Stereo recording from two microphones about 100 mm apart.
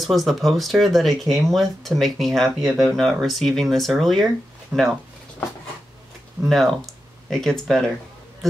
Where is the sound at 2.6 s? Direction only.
30° right (ahead or behind).